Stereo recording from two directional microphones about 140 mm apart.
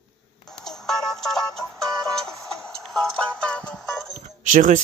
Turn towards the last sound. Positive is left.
turn(degrees=-70)  # may be behind; listen again after turning